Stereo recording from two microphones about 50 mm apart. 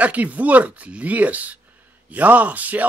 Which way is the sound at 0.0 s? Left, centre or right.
Right.